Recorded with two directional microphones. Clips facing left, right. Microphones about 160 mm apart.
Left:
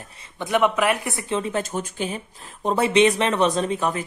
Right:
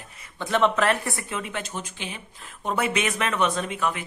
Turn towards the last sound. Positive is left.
turn(degrees=35)  # may be behind; listen again after turning